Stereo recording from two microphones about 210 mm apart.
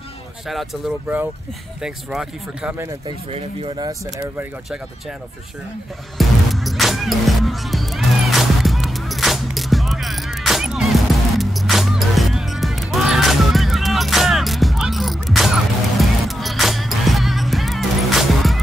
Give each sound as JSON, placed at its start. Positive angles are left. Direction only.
{"t": 0.5, "sound": "speech", "side_deg": 0}
{"t": 3.3, "sound": "speech", "side_deg": -25}
{"t": 6.1, "sound": "music", "side_deg": 0}